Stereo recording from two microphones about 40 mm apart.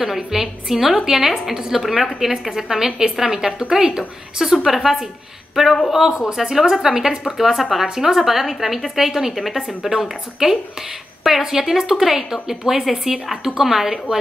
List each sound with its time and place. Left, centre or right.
0.1 s a woman's voice: centre
4.6 s a woman's voice: centre